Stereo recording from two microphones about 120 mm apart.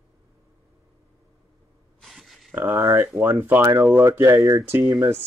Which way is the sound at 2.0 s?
Centre (ahead or behind).